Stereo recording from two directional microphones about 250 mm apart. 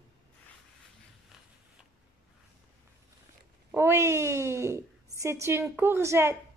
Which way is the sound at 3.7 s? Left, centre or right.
Centre.